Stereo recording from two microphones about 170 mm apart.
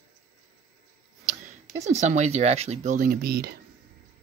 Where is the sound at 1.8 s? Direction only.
45° right (ahead or behind); by 3.5 s 65° right (ahead or behind).